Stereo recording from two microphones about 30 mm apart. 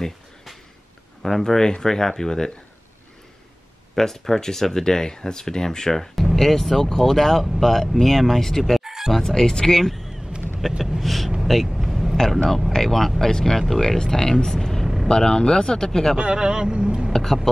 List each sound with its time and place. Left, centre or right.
1.2 s speech: left
3.9 s speech: centre
8.8 s music: centre
9.2 s speech: centre
10.6 s speech: centre
11.6 s vehicle: centre
12.2 s speech: centre
15.0 s speech: left
16.2 s speech: right
17.1 s speech: centre